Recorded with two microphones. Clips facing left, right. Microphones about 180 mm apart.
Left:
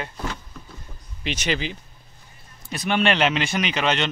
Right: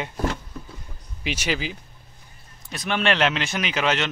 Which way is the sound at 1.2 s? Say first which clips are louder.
Left 1 dB; 10° right (ahead or behind).